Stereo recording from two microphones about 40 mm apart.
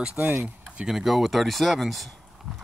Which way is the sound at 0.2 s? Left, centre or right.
Right.